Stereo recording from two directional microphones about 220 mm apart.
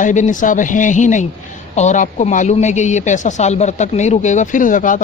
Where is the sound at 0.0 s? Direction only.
35° left (ahead or behind).